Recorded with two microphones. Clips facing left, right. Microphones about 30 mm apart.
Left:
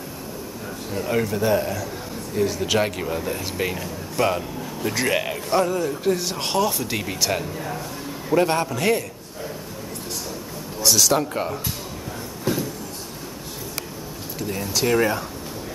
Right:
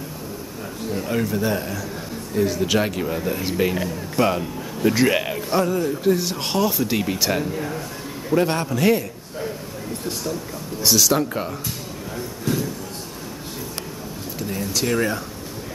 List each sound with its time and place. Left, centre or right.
0.9 s speech: centre
10.9 s speech: centre
12.5 s a sound: centre
14.4 s speech: centre